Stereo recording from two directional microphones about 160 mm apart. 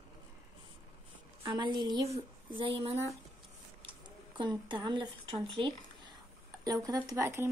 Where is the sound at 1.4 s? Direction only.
30° right (ahead or behind).